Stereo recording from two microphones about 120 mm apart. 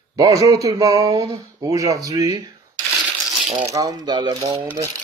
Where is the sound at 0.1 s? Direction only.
30° right (ahead or behind).